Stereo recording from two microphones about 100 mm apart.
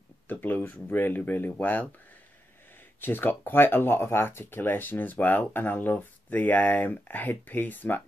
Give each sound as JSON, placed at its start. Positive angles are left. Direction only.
{"t": 0.3, "sound": "speech", "side_deg": 20}
{"t": 3.0, "sound": "speech", "side_deg": 20}